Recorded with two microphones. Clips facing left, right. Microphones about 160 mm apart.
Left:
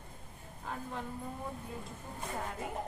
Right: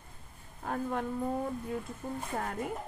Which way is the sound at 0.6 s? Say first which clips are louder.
Right 8 dB; 55° right (ahead or behind).